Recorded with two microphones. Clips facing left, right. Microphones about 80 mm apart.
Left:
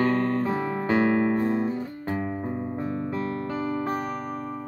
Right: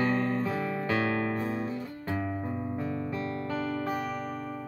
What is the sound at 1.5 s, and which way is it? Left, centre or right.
Music, left.